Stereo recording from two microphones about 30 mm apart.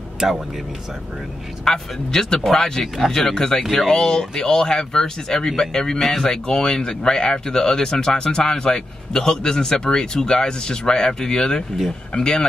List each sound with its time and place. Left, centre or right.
1.6 s speech: left